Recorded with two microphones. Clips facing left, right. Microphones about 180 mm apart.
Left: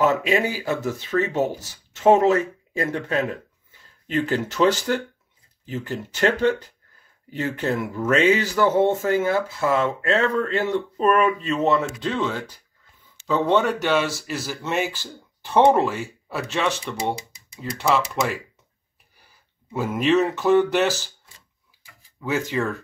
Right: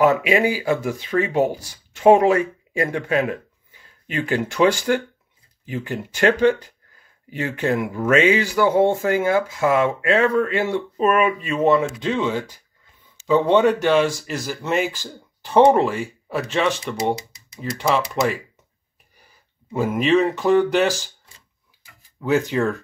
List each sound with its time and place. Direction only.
0.0 s speech: 10° right (ahead or behind)
19.7 s speech: 15° right (ahead or behind)
22.2 s speech: 15° right (ahead or behind)